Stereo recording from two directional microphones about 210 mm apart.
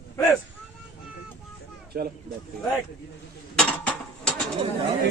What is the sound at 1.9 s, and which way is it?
Speech, 45° right (ahead or behind).